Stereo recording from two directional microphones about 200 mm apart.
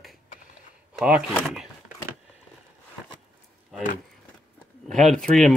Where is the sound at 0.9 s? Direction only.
5° right (ahead or behind).